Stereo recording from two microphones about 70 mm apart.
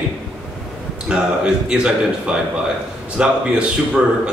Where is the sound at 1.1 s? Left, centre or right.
Centre.